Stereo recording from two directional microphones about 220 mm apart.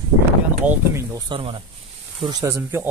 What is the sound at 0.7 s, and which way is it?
Speech, 15° right (ahead or behind).